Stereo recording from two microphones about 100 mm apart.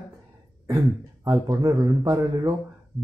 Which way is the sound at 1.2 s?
35° right (ahead or behind).